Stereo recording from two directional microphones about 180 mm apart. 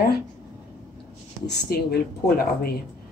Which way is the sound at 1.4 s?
65° left (ahead or behind).